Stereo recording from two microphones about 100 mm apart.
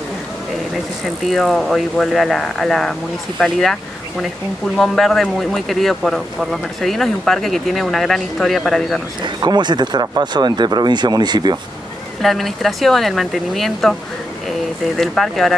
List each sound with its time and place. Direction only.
1.2 s speech: centre (ahead or behind)
4.7 s speech: centre (ahead or behind)
9.2 s speech: 45° right (ahead or behind)
12.2 s speech: centre (ahead or behind)
15.0 s speech: centre (ahead or behind)